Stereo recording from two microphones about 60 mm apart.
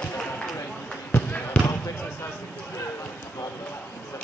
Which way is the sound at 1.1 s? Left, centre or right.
Left.